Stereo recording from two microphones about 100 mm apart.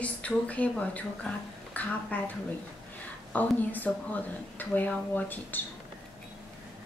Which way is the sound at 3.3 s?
15° left (ahead or behind).